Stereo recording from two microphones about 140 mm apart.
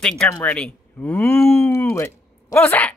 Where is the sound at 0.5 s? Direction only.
10° left (ahead or behind).